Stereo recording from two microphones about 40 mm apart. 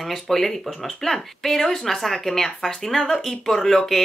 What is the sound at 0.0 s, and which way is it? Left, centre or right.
Speech, centre.